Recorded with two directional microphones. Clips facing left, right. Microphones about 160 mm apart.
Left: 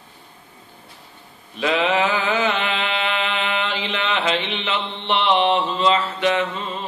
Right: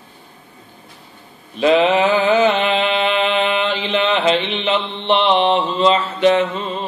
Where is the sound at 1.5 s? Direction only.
25° right (ahead or behind).